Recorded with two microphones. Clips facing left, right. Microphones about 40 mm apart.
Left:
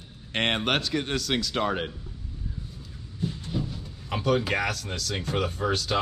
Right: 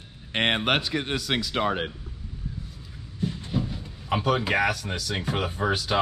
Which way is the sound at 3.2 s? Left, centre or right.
Centre.